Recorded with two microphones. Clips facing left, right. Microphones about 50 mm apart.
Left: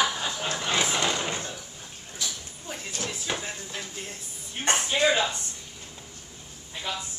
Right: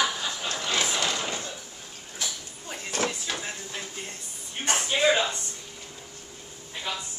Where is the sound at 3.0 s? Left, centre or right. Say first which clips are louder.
Right 7 dB; right.